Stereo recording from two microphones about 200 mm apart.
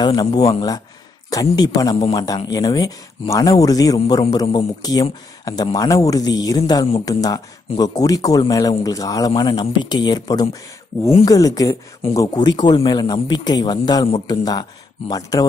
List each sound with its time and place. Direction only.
0.0 s speech: 20° left (ahead or behind)